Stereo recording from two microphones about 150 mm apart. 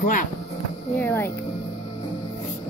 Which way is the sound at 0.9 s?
15° left (ahead or behind).